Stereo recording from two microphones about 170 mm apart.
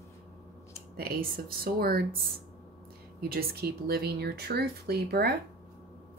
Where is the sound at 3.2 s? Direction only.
65° right (ahead or behind).